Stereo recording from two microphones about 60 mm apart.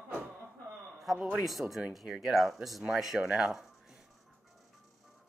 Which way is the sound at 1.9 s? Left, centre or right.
Centre.